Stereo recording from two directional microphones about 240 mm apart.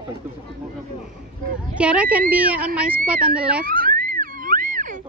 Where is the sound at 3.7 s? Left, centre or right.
Right.